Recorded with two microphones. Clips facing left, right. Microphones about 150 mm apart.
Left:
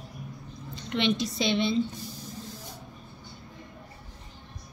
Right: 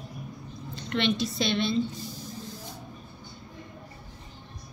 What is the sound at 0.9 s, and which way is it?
Speech, 15° left (ahead or behind).